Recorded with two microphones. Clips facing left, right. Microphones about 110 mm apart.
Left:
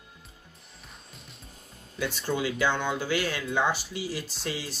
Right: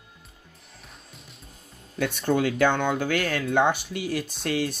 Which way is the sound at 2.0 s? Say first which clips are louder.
Right 6 dB; 55° right (ahead or behind).